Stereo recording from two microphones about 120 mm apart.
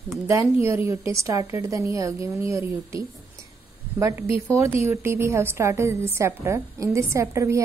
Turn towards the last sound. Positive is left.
turn(degrees=-25)  # may be behind; listen again after turning